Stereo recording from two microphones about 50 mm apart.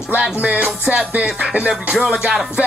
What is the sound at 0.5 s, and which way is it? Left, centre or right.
Music, right.